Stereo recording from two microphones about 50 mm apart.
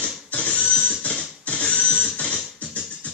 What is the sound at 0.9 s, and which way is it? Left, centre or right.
Music, left.